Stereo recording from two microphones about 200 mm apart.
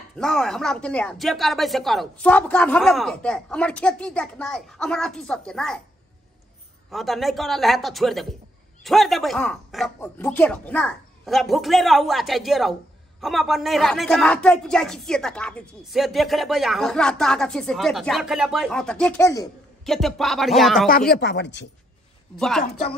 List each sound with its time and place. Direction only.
0.2 s speech: 5° left (ahead or behind)
6.9 s speech: centre (ahead or behind)
19.8 s speech: centre (ahead or behind)
20.9 s speech: 50° left (ahead or behind)